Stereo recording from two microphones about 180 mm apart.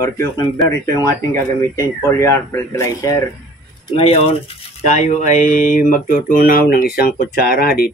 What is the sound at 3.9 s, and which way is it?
Speech, 30° left (ahead or behind).